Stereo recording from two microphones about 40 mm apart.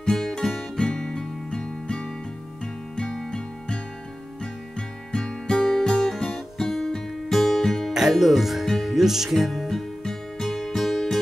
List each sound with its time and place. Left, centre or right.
0.0 s music: centre
7.9 s speech: centre
8.8 s music: centre